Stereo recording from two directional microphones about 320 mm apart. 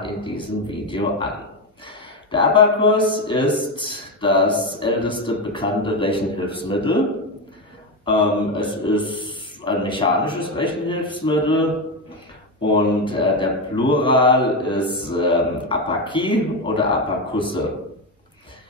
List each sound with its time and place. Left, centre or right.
0.0 s a man's voice: centre
2.3 s a man's voice: centre
8.0 s a man's voice: centre
12.7 s a man's voice: centre